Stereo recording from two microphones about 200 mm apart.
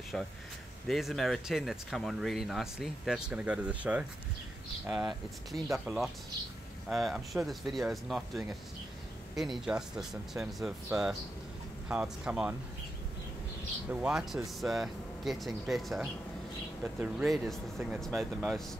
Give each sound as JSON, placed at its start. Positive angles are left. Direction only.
{"t": 0.1, "sound": "speech", "side_deg": 0}
{"t": 13.8, "sound": "speech", "side_deg": -5}